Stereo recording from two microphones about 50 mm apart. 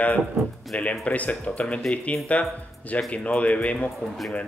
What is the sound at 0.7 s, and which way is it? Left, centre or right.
Speech, left.